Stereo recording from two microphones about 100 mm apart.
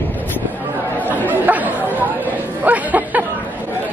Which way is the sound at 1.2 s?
15° right (ahead or behind).